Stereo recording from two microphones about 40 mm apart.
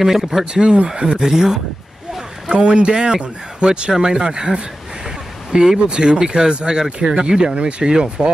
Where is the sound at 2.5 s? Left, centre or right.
Right.